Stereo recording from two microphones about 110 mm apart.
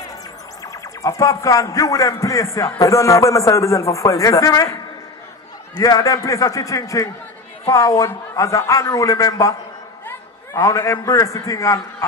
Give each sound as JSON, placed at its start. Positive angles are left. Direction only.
{"t": 1.0, "sound": "a man's voice", "side_deg": 30}
{"t": 5.8, "sound": "a man's voice", "side_deg": 35}